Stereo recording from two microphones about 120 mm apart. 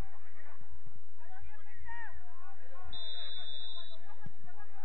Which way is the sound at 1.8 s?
10° left (ahead or behind).